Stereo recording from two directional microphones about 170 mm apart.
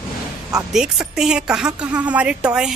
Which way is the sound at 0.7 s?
5° right (ahead or behind).